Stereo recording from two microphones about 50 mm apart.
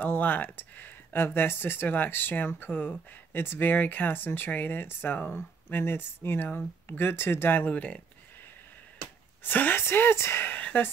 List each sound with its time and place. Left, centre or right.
0.0 s speech: left
7.7 s speech: left
9.4 s speech: left
10.4 s a sound: left